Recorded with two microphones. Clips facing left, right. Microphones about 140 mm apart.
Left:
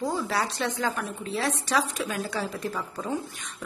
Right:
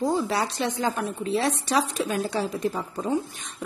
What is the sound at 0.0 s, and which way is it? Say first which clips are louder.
A woman's voice: right 3 dB; 20° right (ahead or behind).